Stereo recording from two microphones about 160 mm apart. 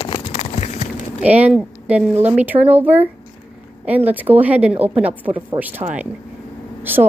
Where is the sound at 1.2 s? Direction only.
10° right (ahead or behind).